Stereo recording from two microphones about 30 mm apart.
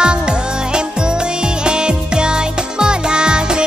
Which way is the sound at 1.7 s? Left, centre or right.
Right.